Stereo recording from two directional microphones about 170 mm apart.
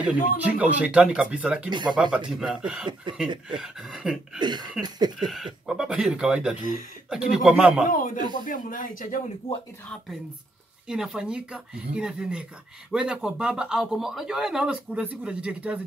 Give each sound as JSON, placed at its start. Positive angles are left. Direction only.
{"t": 0.0, "sound": "speech", "side_deg": -5}
{"t": 1.7, "sound": "a sound", "side_deg": -25}
{"t": 2.3, "sound": "speech", "side_deg": -5}
{"t": 4.4, "sound": "a sound", "side_deg": -25}
{"t": 5.2, "sound": "speech", "side_deg": 0}
{"t": 7.9, "sound": "speech", "side_deg": 50}
{"t": 10.9, "sound": "speech", "side_deg": -5}